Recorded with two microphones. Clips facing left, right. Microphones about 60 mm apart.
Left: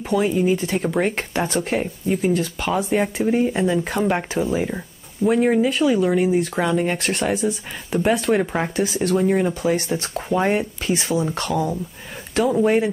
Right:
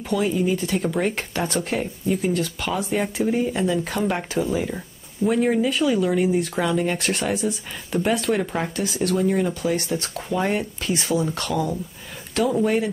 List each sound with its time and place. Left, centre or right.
0.1 s speech: centre
8.4 s speech: centre
8.8 s speech: centre